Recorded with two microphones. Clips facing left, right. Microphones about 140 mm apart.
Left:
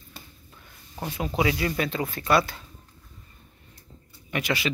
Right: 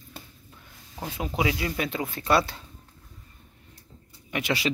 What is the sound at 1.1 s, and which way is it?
Speech, 15° right (ahead or behind).